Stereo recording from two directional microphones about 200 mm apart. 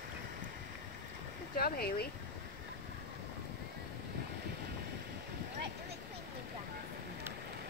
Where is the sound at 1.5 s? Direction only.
50° left (ahead or behind).